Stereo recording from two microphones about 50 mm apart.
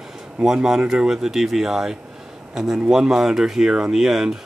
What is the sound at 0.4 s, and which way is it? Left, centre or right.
Speech, centre.